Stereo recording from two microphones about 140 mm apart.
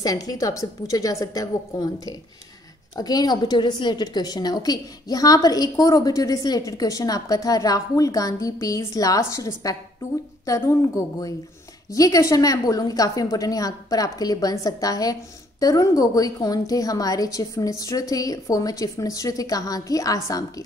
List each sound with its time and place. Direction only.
0.0 s a woman's voice: 25° left (ahead or behind)